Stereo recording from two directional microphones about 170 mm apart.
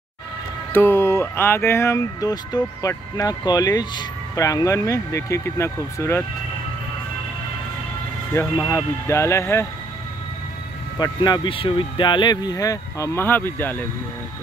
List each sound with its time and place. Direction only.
0.7 s speech: 15° left (ahead or behind)
8.3 s speech: 15° left (ahead or behind)
11.0 s speech: 25° left (ahead or behind)